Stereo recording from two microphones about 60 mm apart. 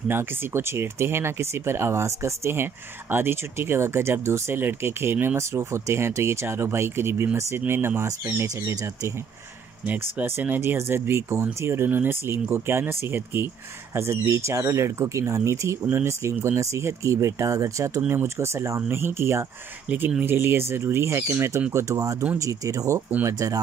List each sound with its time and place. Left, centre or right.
0.1 s speech: right
5.4 s speech: right
8.3 s speech: right
9.8 s speech: right
10.6 s speech: right
14.1 s speech: right
18.0 s speech: right
21.7 s speech: right
23.2 s speech: right